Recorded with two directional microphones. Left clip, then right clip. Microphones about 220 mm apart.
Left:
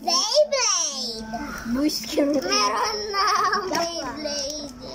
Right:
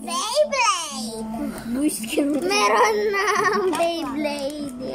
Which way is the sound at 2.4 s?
25° right (ahead or behind).